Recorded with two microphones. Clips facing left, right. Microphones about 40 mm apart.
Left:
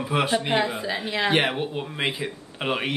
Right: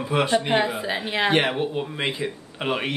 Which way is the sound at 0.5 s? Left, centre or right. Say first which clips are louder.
Right 2 dB; centre.